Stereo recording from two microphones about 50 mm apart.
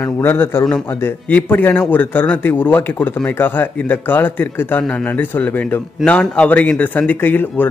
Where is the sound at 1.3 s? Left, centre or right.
Left.